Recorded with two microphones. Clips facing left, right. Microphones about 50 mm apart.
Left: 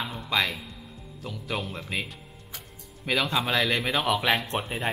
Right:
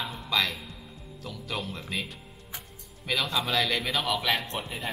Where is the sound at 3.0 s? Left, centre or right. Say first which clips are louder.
Left 3 dB; centre; by 4.7 s left.